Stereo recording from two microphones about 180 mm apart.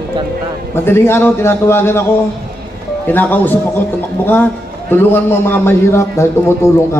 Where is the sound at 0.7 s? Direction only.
15° left (ahead or behind).